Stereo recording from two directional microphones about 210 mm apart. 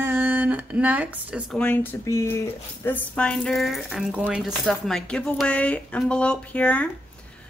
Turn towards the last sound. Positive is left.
turn(degrees=5)  # may be behind; listen again after turning